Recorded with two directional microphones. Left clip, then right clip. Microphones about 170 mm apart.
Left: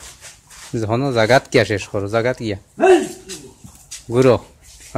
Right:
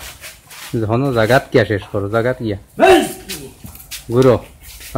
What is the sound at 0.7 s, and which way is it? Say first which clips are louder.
Speech: right 1 dB; 20° left (ahead or behind).